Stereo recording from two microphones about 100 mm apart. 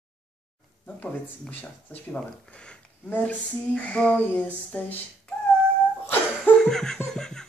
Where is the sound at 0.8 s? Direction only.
20° left (ahead or behind).